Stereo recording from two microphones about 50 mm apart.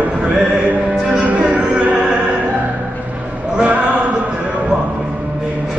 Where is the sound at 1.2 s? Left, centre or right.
Right.